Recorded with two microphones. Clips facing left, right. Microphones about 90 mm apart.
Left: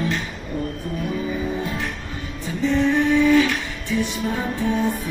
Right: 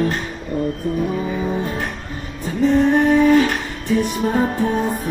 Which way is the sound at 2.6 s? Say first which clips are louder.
Right 4 dB; 45° right (ahead or behind).